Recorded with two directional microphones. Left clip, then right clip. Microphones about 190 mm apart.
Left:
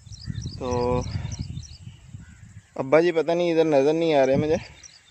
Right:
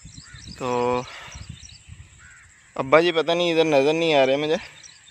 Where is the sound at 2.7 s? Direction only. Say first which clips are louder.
Right 2 dB; 15° left (ahead or behind).